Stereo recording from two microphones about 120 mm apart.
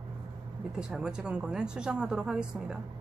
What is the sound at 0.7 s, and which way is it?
A woman's voice, 5° right (ahead or behind).